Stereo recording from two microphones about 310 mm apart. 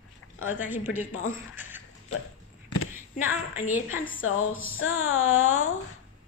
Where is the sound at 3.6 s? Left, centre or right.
Centre.